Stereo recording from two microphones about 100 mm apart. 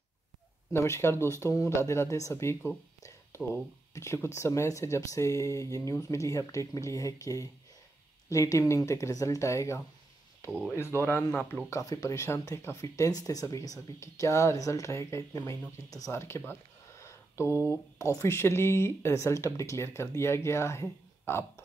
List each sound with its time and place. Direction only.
0.7 s speech: 25° left (ahead or behind)
3.0 s a sound: 30° left (ahead or behind)
3.9 s speech: 30° left (ahead or behind)
11.0 s speech: 20° left (ahead or behind)
11.7 s speech: 35° left (ahead or behind)
16.2 s speech: 25° left (ahead or behind)